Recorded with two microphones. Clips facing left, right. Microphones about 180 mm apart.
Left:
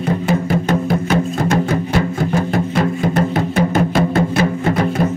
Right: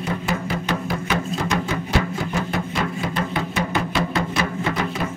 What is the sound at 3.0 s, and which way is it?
Music, 45° left (ahead or behind).